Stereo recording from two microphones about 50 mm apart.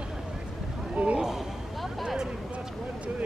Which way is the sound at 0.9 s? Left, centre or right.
Right.